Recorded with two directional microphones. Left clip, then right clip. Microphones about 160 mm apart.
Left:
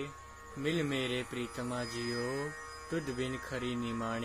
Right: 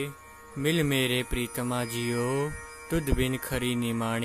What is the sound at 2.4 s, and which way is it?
Speech, 50° right (ahead or behind).